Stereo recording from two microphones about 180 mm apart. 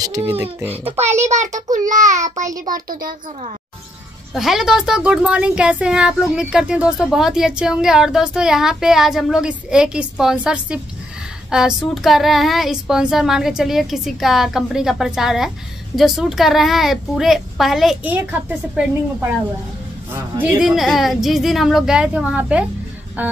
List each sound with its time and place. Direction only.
0.0 s a child's voice: 15° right (ahead or behind)
0.9 s a child's voice: 40° right (ahead or behind)
4.3 s speech: centre (ahead or behind)